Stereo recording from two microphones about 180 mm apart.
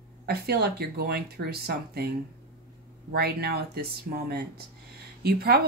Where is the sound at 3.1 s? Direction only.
60° right (ahead or behind).